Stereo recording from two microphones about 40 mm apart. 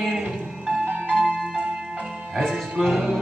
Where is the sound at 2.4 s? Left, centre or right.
Centre.